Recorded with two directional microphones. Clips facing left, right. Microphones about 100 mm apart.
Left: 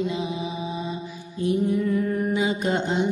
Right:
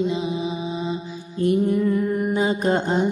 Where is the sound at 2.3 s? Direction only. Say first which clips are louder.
Right 3 dB; 40° right (ahead or behind).